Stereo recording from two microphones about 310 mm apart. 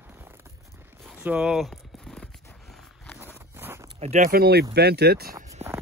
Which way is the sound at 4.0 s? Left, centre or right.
Right.